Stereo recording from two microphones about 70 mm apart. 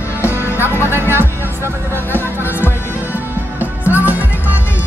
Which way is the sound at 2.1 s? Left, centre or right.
Left.